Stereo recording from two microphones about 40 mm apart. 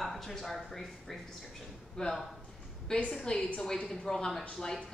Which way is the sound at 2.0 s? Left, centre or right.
Centre.